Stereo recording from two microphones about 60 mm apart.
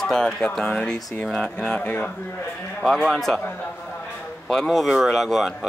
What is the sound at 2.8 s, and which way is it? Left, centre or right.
Speech, centre.